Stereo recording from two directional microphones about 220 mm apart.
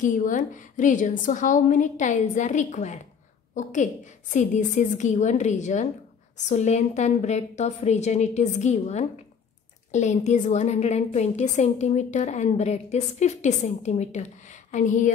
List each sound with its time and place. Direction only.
0.0 s a woman's voice: 35° left (ahead or behind)